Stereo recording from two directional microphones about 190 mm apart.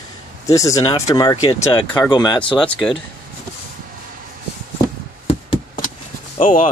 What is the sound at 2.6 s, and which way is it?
Speech, 5° left (ahead or behind).